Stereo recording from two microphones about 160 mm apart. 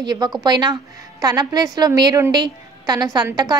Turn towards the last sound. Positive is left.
turn(degrees=-25)  # may be behind; listen again after turning